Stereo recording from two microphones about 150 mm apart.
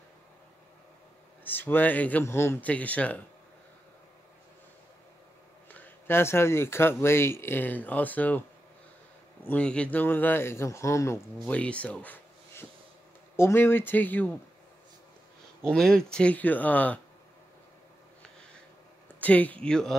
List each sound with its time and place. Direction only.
1.4 s speech: 15° left (ahead or behind)
5.8 s speech: 15° left (ahead or behind)
11.4 s speech: 10° left (ahead or behind)
15.6 s speech: 5° left (ahead or behind)
19.1 s speech: 10° left (ahead or behind)